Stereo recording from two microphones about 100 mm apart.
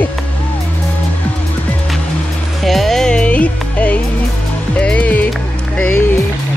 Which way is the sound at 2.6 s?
Centre (ahead or behind).